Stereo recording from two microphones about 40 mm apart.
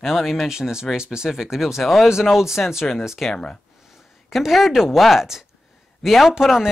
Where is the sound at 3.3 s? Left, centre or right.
Centre.